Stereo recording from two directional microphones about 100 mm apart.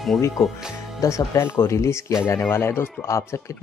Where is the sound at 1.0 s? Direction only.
30° left (ahead or behind).